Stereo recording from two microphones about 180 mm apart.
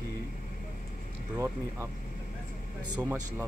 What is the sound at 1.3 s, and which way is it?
Speech, 15° right (ahead or behind).